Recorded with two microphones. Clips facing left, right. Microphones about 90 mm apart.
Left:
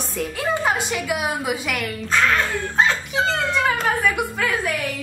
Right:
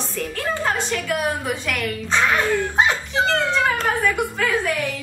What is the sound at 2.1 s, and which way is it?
Speech, 15° right (ahead or behind).